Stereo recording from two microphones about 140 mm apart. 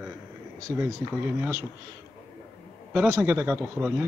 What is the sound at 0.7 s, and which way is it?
Speech, 15° right (ahead or behind).